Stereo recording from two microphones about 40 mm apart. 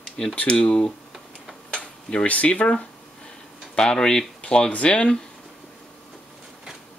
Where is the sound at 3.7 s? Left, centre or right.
Centre.